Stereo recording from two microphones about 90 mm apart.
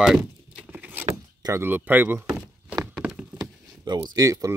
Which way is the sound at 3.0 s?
10° right (ahead or behind).